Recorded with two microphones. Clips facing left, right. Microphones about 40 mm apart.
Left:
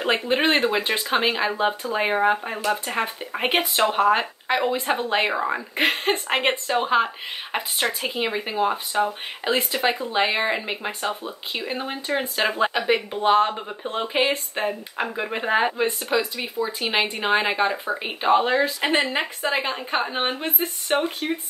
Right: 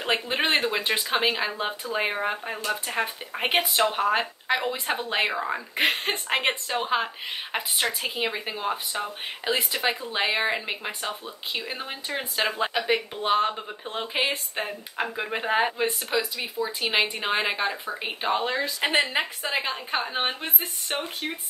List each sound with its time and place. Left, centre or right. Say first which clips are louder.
0.0 s speech: left 4 dB; centre
1.5 s speech: left 6 dB; centre
5.8 s speech: left 3 dB; centre
6.1 s speech: left 3 dB; centre
11.1 s speech: left 4 dB; centre
18.2 s speech: left 7 dB; centre
18.8 s speech: left 2 dB; centre